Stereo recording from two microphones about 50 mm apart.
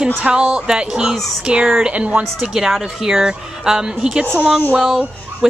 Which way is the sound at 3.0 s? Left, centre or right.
Centre.